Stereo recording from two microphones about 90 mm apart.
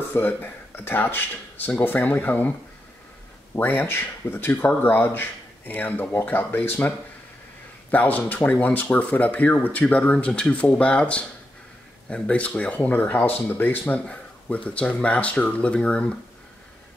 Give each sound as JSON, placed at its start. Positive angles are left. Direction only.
{"t": 0.1, "sound": "speech", "side_deg": 20}
{"t": 3.5, "sound": "speech", "side_deg": 25}
{"t": 7.9, "sound": "speech", "side_deg": 20}